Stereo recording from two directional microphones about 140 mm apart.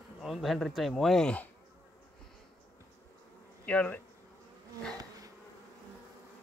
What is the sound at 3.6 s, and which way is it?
Bee, 10° left (ahead or behind).